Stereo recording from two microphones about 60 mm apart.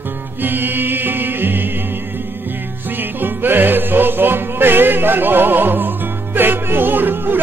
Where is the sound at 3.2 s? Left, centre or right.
Right.